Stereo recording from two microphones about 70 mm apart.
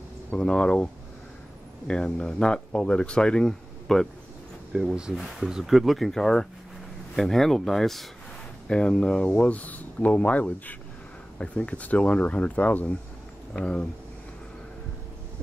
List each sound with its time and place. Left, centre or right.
0.3 s speech: centre
1.9 s speech: centre
4.7 s speech: centre